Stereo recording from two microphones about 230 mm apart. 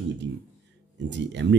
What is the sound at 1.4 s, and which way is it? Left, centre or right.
Speech, right.